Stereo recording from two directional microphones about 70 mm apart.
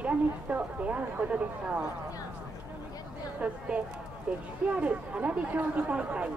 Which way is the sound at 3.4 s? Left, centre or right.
Centre.